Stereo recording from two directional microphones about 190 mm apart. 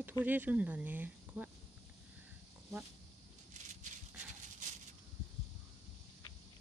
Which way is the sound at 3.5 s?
40° right (ahead or behind).